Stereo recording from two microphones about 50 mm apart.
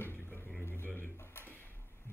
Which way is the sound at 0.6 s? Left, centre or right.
Left.